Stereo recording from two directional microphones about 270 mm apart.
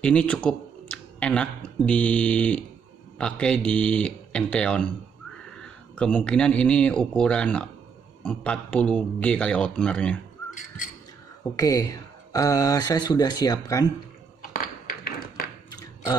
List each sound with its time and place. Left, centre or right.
0.0 s a man's voice: centre
5.9 s a man's voice: centre
11.5 s speech: centre
14.4 s tap: left